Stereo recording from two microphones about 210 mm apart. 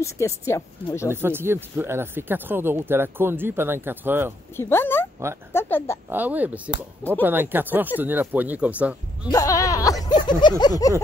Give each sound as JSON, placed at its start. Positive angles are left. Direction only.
{"t": 0.0, "sound": "speech", "side_deg": 15}
{"t": 1.1, "sound": "speech", "side_deg": -10}
{"t": 4.6, "sound": "speech", "side_deg": 10}
{"t": 6.0, "sound": "speech", "side_deg": -10}
{"t": 9.3, "sound": "speech", "side_deg": 15}
{"t": 10.0, "sound": "a sound", "side_deg": 20}
{"t": 10.6, "sound": "speech", "side_deg": 15}